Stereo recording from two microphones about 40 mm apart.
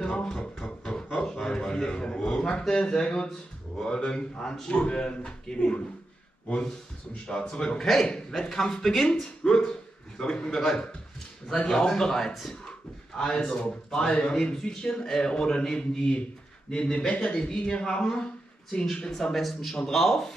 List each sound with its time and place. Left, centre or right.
0.0 s music: centre
2.9 s a man's voice: centre
7.2 s a man's voice: centre
7.8 s a man's voice: centre